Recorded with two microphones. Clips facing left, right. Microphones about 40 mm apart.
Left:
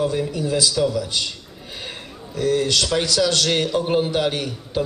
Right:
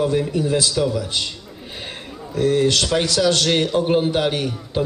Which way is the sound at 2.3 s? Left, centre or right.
Right.